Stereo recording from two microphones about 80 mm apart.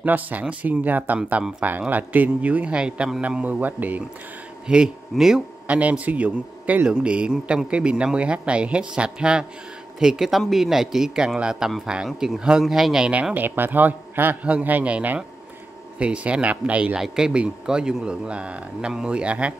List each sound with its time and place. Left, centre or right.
0.0 s a man's voice: right
4.6 s a man's voice: centre
5.8 s a man's voice: centre
13.1 s a man's voice: centre